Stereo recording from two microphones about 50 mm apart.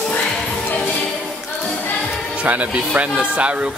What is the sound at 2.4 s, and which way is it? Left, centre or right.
Speech, right.